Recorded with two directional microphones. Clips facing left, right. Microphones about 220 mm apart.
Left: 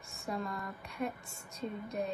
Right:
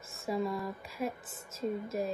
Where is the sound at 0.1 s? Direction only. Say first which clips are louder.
Right 5 dB; centre (ahead or behind).